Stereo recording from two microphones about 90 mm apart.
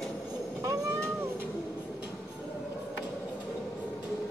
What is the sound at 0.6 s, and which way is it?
Cat, 30° right (ahead or behind).